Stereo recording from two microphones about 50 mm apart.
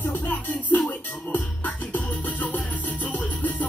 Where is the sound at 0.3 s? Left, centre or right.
Left.